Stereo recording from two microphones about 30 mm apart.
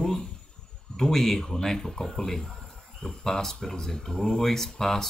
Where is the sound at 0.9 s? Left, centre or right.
Centre.